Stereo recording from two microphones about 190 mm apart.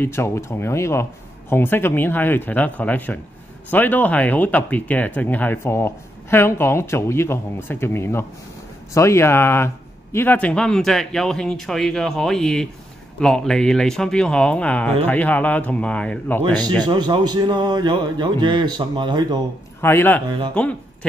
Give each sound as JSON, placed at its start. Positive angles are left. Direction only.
{"t": 0.0, "sound": "a man's voice", "side_deg": 15}
{"t": 16.8, "sound": "a man's voice", "side_deg": -25}
{"t": 19.8, "sound": "speech", "side_deg": 10}
{"t": 20.2, "sound": "a man's voice", "side_deg": -25}
{"t": 20.5, "sound": "speech", "side_deg": 5}